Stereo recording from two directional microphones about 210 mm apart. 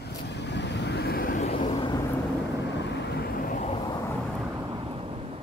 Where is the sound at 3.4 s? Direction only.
40° left (ahead or behind).